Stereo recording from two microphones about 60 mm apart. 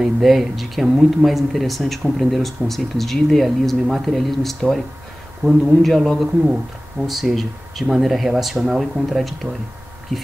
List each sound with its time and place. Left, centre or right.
0.0 s speech: centre